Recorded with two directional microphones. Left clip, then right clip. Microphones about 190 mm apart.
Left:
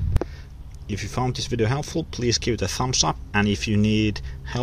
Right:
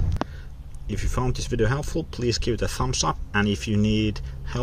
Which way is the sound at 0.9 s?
10° left (ahead or behind).